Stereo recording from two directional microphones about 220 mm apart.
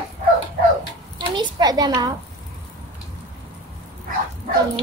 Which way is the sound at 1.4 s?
20° right (ahead or behind).